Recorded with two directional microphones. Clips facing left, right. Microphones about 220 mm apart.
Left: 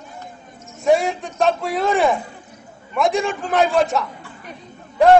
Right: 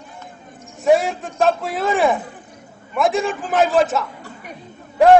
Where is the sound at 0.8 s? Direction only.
Centre (ahead or behind).